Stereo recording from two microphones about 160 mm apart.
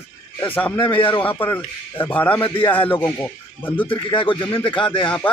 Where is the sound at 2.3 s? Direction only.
35° left (ahead or behind).